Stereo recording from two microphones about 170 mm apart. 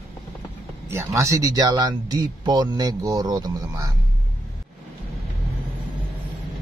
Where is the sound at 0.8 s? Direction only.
15° right (ahead or behind).